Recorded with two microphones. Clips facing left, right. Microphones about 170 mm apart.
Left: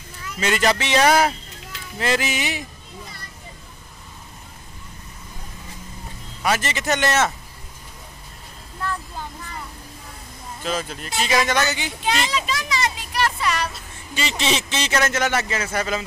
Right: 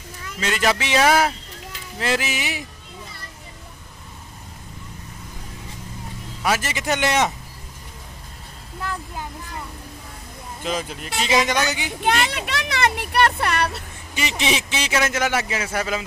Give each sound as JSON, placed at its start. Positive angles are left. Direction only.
{"t": 0.4, "sound": "speech", "side_deg": 0}
{"t": 6.4, "sound": "speech", "side_deg": -5}
{"t": 10.6, "sound": "speech", "side_deg": -15}
{"t": 12.0, "sound": "a child's voice", "side_deg": -55}
{"t": 14.1, "sound": "speech", "side_deg": -15}